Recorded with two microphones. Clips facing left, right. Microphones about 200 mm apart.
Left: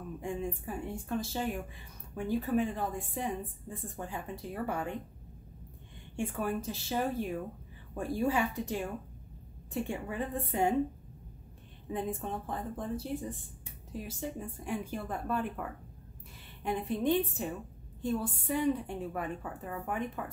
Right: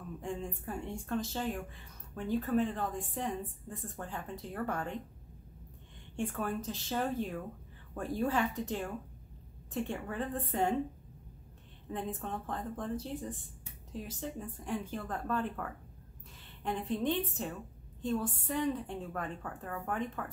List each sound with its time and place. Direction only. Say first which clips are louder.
0.2 s a woman's voice: left 3 dB; 10° left (ahead or behind)
6.1 s a woman's voice: left 2 dB; 10° left (ahead or behind)
11.9 s a woman's voice: left 3 dB; 10° left (ahead or behind)